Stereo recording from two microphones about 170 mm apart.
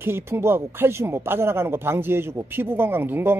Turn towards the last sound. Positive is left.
turn(degrees=-10)  # may be behind; listen again after turning